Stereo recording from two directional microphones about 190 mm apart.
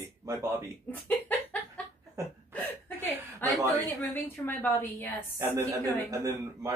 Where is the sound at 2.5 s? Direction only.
10° left (ahead or behind).